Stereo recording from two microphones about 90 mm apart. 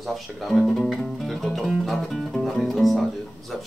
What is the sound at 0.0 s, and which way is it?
Speech, centre (ahead or behind).